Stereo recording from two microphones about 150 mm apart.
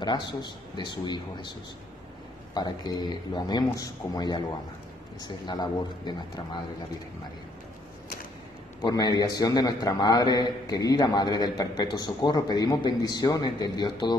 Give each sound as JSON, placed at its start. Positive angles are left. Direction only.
{"t": 0.0, "sound": "a man's voice", "side_deg": 30}
{"t": 2.5, "sound": "a man's voice", "side_deg": 25}
{"t": 8.8, "sound": "a man's voice", "side_deg": 25}